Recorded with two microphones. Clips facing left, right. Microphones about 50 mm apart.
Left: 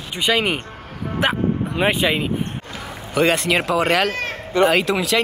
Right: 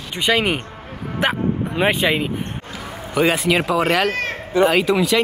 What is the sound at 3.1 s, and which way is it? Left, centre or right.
Speech, centre.